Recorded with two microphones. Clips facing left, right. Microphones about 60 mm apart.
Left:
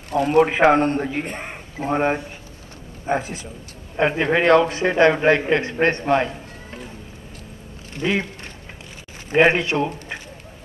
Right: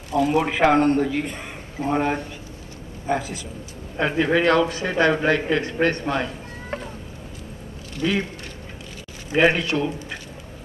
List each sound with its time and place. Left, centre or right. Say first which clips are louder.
0.1 s speech: left 4 dB; left
0.5 s a man's voice: left 1 dB; left
8.0 s a man's voice: left 1 dB; left
9.3 s a man's voice: left 2 dB; left